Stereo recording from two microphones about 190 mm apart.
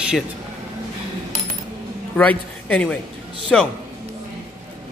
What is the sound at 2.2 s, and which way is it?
A woman's voice, 5° left (ahead or behind).